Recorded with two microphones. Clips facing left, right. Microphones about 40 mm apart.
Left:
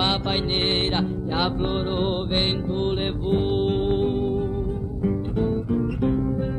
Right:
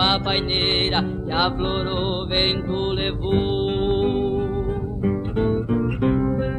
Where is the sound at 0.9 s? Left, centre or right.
Right.